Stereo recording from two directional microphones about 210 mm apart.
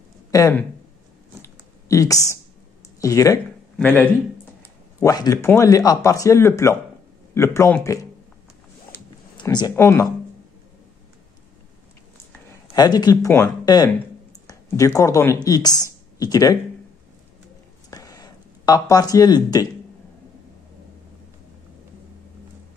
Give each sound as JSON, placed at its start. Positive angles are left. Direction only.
{"t": 0.3, "sound": "speech", "side_deg": 10}
{"t": 1.4, "sound": "chewing", "side_deg": 15}
{"t": 3.0, "sound": "speech", "side_deg": 15}
{"t": 9.4, "sound": "speech", "side_deg": 20}
{"t": 12.7, "sound": "speech", "side_deg": 20}
{"t": 17.8, "sound": "a sound", "side_deg": 15}